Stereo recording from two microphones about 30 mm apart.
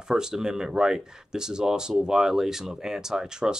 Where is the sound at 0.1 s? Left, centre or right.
Right.